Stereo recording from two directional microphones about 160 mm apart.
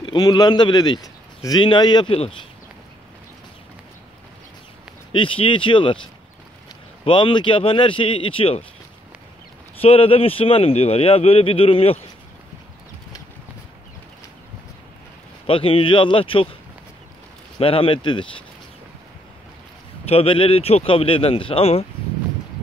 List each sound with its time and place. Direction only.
0.0 s speech: 30° left (ahead or behind)
5.1 s speech: 35° left (ahead or behind)
7.1 s speech: 30° left (ahead or behind)
9.8 s speech: 35° left (ahead or behind)
15.4 s speech: 35° left (ahead or behind)
17.6 s speech: 35° left (ahead or behind)
20.1 s speech: 35° left (ahead or behind)